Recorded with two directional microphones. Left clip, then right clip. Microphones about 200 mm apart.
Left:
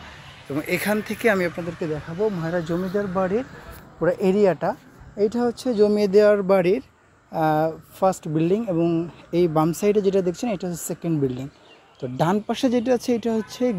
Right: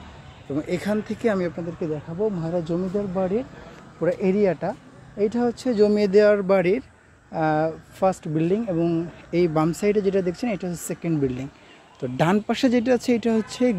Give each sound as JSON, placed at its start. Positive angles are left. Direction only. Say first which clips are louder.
{"t": 0.6, "sound": "speech", "louder": "left 2 dB", "side_deg": 15}
{"t": 2.1, "sound": "speech", "louder": "left 1 dB", "side_deg": 25}
{"t": 12.0, "sound": "speech", "louder": "right 1 dB", "side_deg": 0}